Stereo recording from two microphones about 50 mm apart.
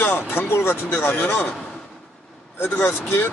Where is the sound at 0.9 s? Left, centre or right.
Left.